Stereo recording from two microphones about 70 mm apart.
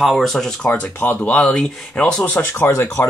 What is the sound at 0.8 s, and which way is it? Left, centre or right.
Speech, left.